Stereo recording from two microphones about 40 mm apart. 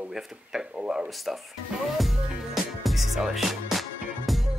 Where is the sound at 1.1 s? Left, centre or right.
Centre.